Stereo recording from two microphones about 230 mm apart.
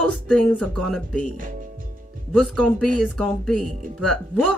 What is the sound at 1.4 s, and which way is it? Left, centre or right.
Music, right.